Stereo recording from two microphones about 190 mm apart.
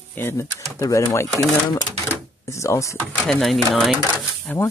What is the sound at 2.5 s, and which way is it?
Speech, 15° left (ahead or behind).